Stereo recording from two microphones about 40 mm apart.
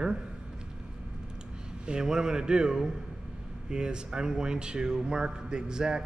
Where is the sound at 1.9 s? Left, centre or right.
Centre.